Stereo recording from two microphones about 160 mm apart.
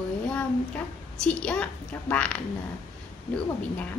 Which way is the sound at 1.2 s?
5° left (ahead or behind).